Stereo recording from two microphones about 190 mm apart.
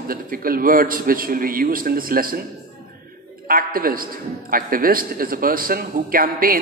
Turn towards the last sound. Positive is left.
turn(degrees=-50)  # may be behind; listen again after turning